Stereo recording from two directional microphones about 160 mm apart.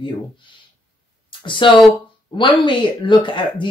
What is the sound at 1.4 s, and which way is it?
A woman's voice, 30° left (ahead or behind).